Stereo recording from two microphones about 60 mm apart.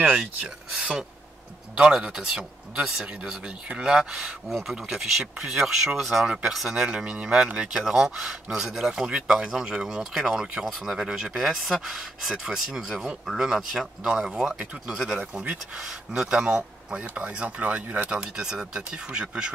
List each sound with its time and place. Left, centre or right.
0.0 s speech: right
0.7 s speech: centre
10.6 s speech: centre; by 18.1 s right
18.1 s speech: centre